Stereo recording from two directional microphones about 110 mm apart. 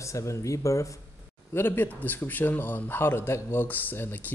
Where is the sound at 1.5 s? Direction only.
20° left (ahead or behind).